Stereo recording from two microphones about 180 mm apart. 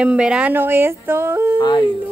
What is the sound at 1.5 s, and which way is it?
Yodeling, 25° left (ahead or behind).